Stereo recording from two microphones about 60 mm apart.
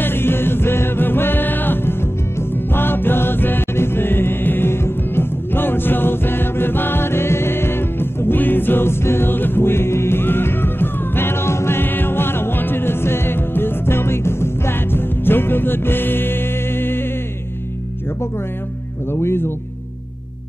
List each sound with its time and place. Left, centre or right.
0.0 s music: left